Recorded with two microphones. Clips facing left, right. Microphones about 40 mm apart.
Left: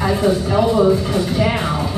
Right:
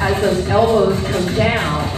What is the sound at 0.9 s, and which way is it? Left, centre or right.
Speech, right.